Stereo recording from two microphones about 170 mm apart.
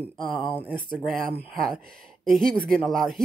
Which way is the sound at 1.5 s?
Centre (ahead or behind).